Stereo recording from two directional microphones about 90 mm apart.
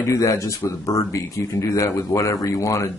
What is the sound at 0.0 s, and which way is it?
Speech, 35° left (ahead or behind).